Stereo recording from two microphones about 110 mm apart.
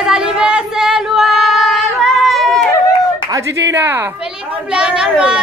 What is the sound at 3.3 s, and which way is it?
Speech, 25° right (ahead or behind).